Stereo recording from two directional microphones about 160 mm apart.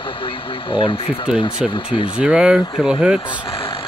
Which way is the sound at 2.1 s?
5° right (ahead or behind).